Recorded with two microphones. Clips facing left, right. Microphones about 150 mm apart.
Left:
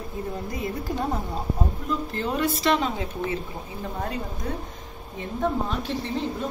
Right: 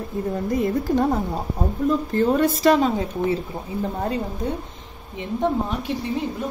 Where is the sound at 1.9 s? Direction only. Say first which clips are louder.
Right 10 dB; 45° right (ahead or behind).